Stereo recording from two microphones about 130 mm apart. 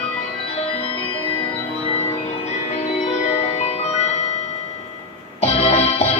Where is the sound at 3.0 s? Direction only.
60° left (ahead or behind).